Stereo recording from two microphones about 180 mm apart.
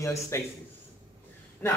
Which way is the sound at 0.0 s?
15° left (ahead or behind).